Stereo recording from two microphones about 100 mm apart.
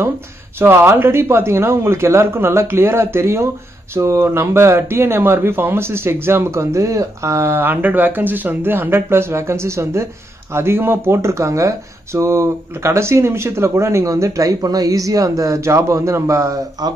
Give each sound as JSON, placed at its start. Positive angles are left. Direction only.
{"t": 0.6, "sound": "speech", "side_deg": -25}